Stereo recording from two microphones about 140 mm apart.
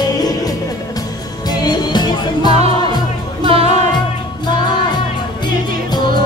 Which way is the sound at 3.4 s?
40° right (ahead or behind).